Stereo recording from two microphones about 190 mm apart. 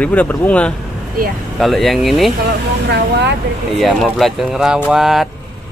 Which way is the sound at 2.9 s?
65° right (ahead or behind).